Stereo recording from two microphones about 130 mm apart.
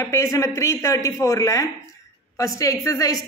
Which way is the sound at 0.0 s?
20° left (ahead or behind).